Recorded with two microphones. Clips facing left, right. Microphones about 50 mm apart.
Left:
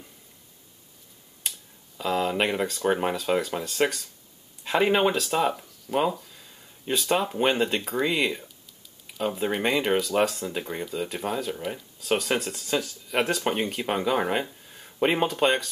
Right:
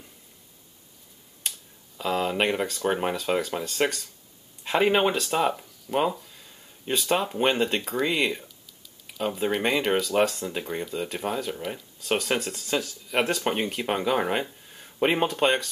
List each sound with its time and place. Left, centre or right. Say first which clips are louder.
2.0 s speech: even; centre